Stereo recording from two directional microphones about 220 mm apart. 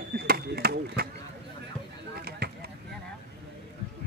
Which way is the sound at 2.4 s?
45° right (ahead or behind).